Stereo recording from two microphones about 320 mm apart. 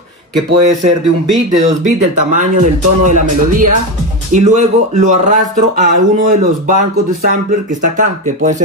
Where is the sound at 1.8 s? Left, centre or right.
Right.